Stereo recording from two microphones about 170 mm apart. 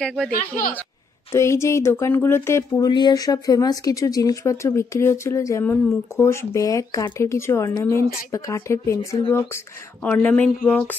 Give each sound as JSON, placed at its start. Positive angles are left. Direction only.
{"t": 0.0, "sound": "speech", "side_deg": 0}
{"t": 1.3, "sound": "speech", "side_deg": 15}